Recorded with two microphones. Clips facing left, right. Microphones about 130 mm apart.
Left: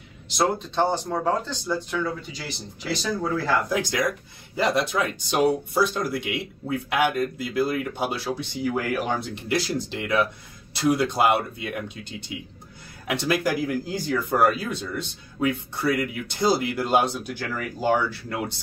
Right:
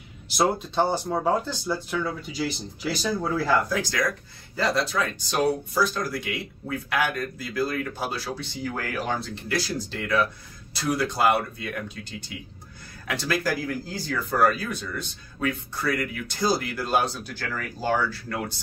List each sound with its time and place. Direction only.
0.4 s speech: 10° right (ahead or behind)
3.6 s speech: 20° left (ahead or behind)